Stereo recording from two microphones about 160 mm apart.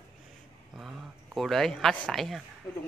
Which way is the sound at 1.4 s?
Centre (ahead or behind).